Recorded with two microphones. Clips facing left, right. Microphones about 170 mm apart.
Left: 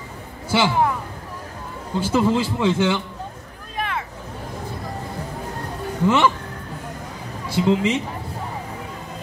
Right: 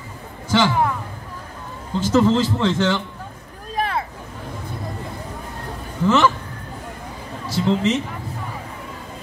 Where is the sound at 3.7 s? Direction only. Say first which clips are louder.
Right 4 dB; 35° right (ahead or behind).